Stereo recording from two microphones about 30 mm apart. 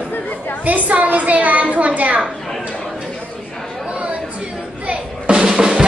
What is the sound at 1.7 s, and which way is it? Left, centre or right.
Speech, right.